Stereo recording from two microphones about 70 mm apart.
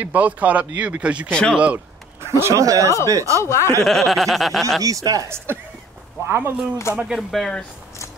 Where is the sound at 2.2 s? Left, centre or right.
Right.